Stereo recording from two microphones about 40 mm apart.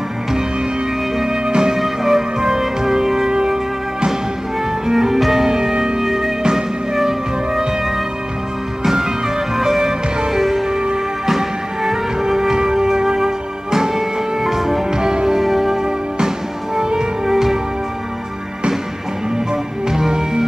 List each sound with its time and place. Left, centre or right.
1.1 s music: centre
1.8 s music: centre
4.8 s music: centre
9.6 s music: centre
19.5 s music: centre